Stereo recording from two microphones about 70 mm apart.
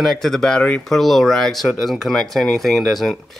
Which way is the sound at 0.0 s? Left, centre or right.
Centre.